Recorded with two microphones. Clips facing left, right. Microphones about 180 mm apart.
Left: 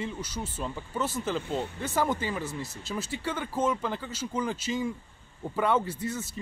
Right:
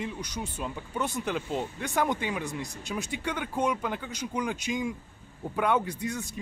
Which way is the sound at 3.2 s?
5° left (ahead or behind).